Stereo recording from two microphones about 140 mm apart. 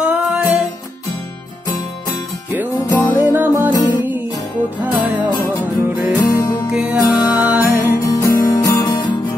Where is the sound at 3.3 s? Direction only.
15° right (ahead or behind).